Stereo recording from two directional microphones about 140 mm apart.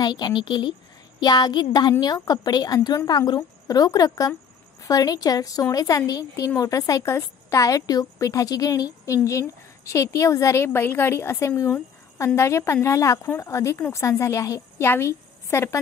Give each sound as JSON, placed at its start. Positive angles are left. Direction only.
{"t": 0.0, "sound": "a woman's voice", "side_deg": 30}